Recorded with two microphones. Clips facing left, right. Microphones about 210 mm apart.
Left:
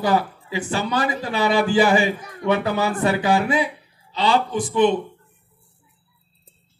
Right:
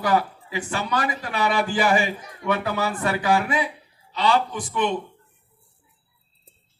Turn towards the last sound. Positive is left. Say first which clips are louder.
# left 7 dB
turn(degrees=30)  # may be behind; listen again after turning